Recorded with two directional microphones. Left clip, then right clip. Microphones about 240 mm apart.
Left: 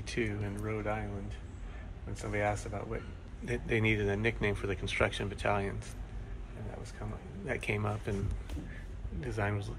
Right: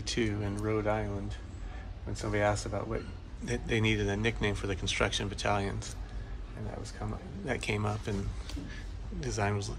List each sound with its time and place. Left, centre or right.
0.0 s speech: centre
2.1 s speech: centre
7.4 s speech: centre
9.2 s speech: centre